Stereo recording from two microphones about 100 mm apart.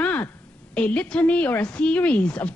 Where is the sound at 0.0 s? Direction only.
15° left (ahead or behind).